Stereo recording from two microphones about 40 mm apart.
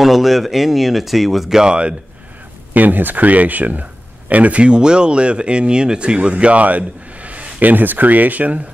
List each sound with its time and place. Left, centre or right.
0.0 s speech: centre
1.6 s speech: right
2.7 s speech: right
7.6 s speech: right